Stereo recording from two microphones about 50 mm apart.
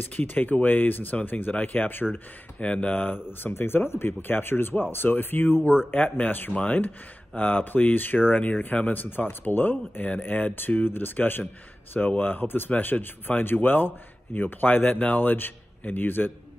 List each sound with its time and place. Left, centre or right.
0.0 s speech: left
2.6 s speech: left
3.5 s speech: left